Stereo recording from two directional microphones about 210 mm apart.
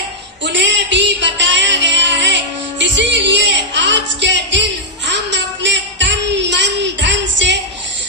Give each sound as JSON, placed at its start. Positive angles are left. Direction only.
{"t": 0.4, "sound": "music", "side_deg": -55}